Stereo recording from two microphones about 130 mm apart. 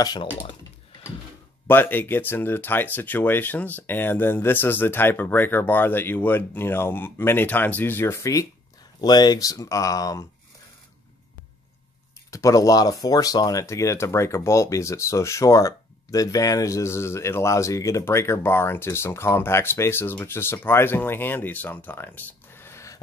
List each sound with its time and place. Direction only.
0.0 s speech: 35° left (ahead or behind)
1.7 s speech: 15° left (ahead or behind)
12.3 s speech: 25° left (ahead or behind)